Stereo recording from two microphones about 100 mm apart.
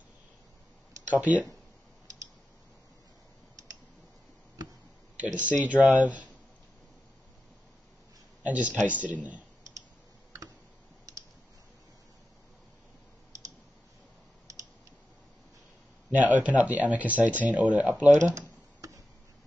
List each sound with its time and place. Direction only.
1.1 s speech: 15° right (ahead or behind)
5.2 s speech: 15° right (ahead or behind)
8.4 s speech: 15° right (ahead or behind)
14.5 s typing: 35° right (ahead or behind)
16.1 s speech: 15° right (ahead or behind)
18.8 s tick-tock: 35° right (ahead or behind)